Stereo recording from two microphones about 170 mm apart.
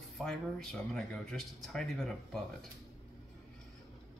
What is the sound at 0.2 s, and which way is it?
Speech, centre (ahead or behind).